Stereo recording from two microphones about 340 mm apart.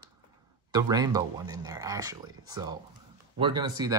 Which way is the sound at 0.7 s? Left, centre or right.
Centre.